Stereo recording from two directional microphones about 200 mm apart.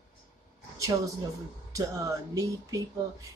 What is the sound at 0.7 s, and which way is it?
Speech, 15° right (ahead or behind).